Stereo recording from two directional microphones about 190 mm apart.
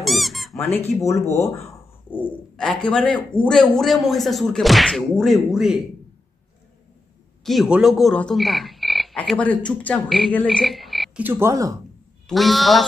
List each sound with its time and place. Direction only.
0.0 s squeak: centre (ahead or behind)
0.6 s speech: 10° left (ahead or behind)
7.4 s croak: centre (ahead or behind)
11.2 s speech: 15° right (ahead or behind)
12.3 s speech: centre (ahead or behind)